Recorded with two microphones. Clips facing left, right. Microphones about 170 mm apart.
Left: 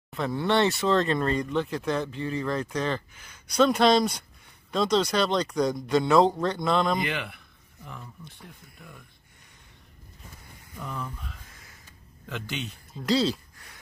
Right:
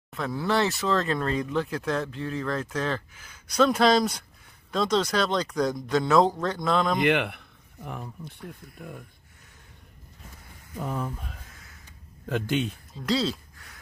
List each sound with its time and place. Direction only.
0.1 s speech: centre (ahead or behind)
7.1 s speech: 60° right (ahead or behind)
10.8 s speech: 45° right (ahead or behind)
13.0 s speech: centre (ahead or behind)